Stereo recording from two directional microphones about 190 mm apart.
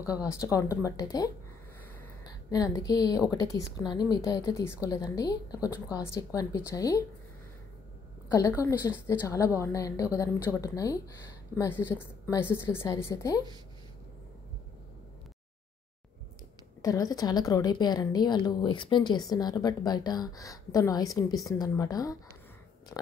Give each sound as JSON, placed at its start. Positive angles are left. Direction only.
{"t": 0.2, "sound": "a woman's voice", "side_deg": 15}
{"t": 2.5, "sound": "a woman's voice", "side_deg": 20}
{"t": 8.3, "sound": "a woman's voice", "side_deg": 15}
{"t": 16.8, "sound": "a woman's voice", "side_deg": 20}